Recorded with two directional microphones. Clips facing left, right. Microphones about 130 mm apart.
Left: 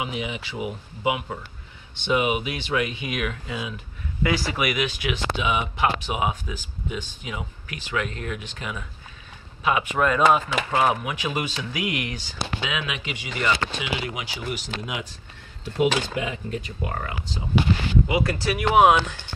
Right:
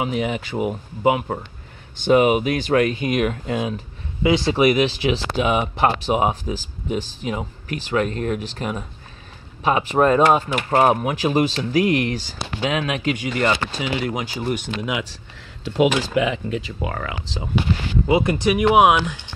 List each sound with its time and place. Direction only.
0.0 s speech: 45° right (ahead or behind)
4.2 s speech: 25° right (ahead or behind)
5.4 s speech: 40° right (ahead or behind)
14.8 s speech: 90° right
18.0 s speech: 25° right (ahead or behind)